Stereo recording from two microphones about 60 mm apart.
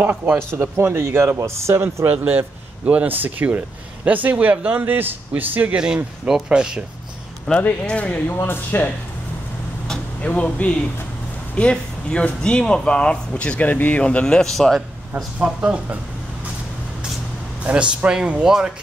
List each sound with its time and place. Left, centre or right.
0.0 s speech: right
0.6 s speech: right
2.0 s speech: right
6.2 s speech: centre
7.5 s speech: centre
8.3 s speech: left
9.8 s a sound: left
11.5 s speech: centre
14.2 s a man's voice: centre
15.3 s speech: centre
17.6 s speech: centre